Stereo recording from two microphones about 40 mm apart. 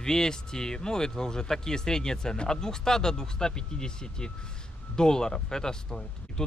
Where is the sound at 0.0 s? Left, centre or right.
Centre.